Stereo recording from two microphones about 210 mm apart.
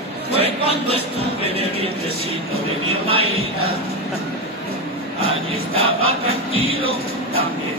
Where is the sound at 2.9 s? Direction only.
25° right (ahead or behind).